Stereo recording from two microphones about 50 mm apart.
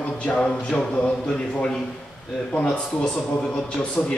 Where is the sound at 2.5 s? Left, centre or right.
Centre.